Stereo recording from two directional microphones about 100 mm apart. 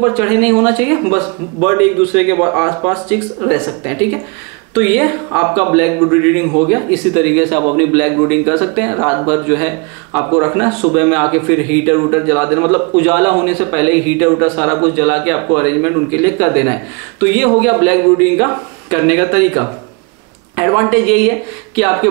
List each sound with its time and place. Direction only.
0.0 s speech: 15° right (ahead or behind)